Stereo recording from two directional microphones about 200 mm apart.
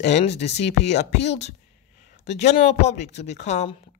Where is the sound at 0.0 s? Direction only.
30° left (ahead or behind).